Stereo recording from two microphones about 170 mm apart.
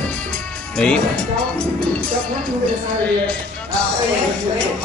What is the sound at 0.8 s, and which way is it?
Speech, 5° left (ahead or behind).